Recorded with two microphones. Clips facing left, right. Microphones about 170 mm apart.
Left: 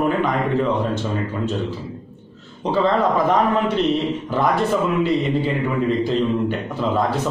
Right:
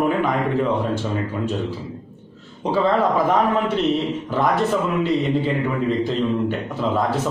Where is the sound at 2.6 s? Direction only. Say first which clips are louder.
Even; 5° right (ahead or behind).